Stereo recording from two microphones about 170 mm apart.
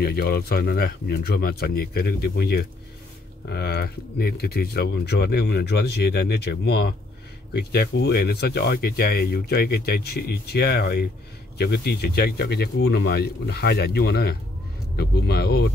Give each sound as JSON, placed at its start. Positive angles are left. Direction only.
{"t": 0.0, "sound": "speech", "side_deg": 70}